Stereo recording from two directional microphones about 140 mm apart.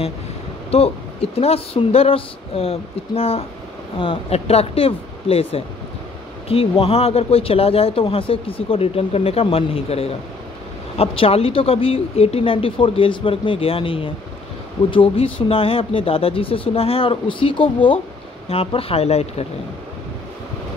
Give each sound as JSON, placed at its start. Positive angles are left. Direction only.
{"t": 0.7, "sound": "speech", "side_deg": 45}